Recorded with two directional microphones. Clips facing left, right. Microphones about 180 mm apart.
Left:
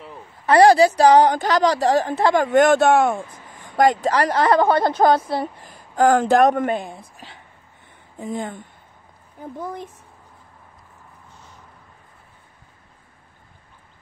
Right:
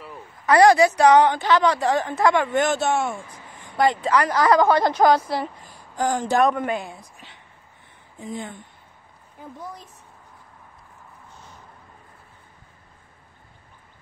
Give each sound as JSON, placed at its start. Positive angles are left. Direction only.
{"t": 0.5, "sound": "a woman's voice", "side_deg": 30}
{"t": 5.7, "sound": "speech", "side_deg": 60}
{"t": 8.2, "sound": "speech", "side_deg": 50}